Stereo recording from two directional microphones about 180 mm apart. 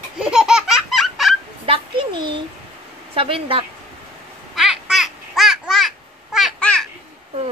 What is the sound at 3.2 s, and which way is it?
Speech, 30° right (ahead or behind).